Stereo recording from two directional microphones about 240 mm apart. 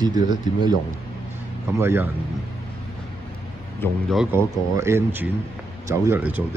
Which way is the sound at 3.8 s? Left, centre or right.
Centre.